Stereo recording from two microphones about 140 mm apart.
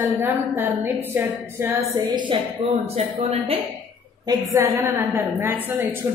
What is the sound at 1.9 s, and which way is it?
A woman's voice, 35° right (ahead or behind).